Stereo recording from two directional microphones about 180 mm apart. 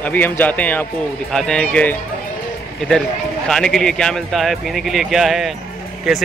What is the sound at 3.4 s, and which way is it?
Speech, 5° left (ahead or behind).